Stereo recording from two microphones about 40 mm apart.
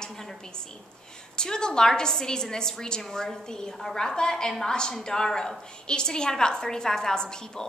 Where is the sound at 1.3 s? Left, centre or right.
Centre.